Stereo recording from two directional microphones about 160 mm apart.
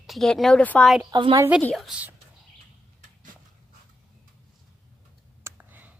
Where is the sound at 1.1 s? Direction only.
30° right (ahead or behind).